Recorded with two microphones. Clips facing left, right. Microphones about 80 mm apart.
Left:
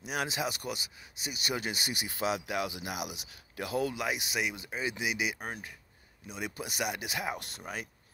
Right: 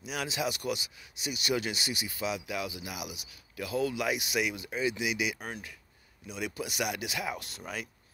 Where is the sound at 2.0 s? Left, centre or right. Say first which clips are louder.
Left 4 dB; left.